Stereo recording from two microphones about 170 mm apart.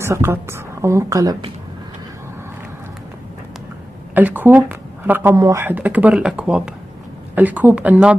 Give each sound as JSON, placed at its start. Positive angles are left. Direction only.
{"t": 0.0, "sound": "speech", "side_deg": -15}
{"t": 4.1, "sound": "speech", "side_deg": -10}